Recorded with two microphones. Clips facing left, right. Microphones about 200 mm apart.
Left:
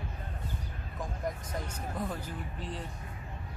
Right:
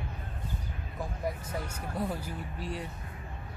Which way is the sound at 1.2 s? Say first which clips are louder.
Right 2 dB; 10° right (ahead or behind).